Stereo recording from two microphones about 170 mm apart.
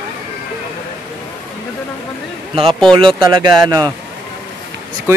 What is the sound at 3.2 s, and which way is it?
Speech, 25° right (ahead or behind).